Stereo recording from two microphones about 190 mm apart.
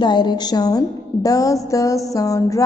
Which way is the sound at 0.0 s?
25° left (ahead or behind).